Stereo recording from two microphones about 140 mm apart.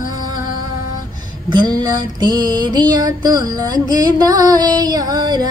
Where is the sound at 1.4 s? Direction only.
30° right (ahead or behind).